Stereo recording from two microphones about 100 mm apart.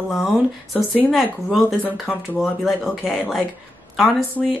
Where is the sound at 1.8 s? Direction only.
20° right (ahead or behind).